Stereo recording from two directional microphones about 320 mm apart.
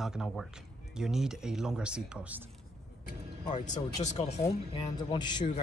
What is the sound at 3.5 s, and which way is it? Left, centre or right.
Speech, left.